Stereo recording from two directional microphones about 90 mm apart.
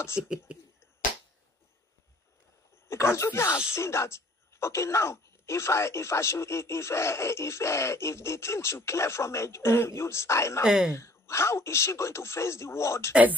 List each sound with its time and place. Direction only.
0.2 s speech: 10° right (ahead or behind)
2.9 s speech: 30° left (ahead or behind)
10.6 s speech: 5° right (ahead or behind)
11.0 s speech: 30° left (ahead or behind)
13.1 s speech: 15° right (ahead or behind)